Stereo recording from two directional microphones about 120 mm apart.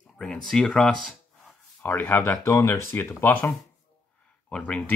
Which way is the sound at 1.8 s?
15° left (ahead or behind).